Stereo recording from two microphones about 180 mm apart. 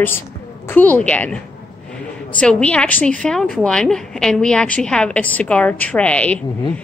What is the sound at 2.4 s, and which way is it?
A woman's voice, 5° left (ahead or behind).